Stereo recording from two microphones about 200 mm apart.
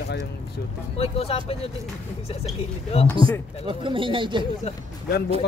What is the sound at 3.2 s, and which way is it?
Speech, 25° right (ahead or behind).